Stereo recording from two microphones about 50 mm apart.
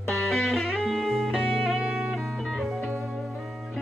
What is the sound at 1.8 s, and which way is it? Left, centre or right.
Music, centre.